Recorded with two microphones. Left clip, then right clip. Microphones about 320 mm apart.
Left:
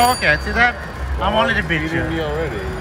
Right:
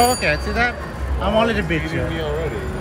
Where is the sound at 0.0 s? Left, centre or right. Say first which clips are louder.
Left 2 dB; centre.